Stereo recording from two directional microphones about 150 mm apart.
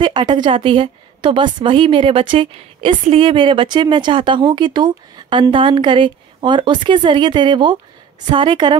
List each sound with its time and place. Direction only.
0.0 s a woman's voice: 30° right (ahead or behind)